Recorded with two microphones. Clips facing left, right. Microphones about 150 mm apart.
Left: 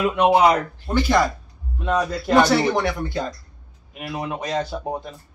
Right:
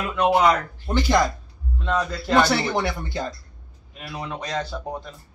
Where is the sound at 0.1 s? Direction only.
20° left (ahead or behind).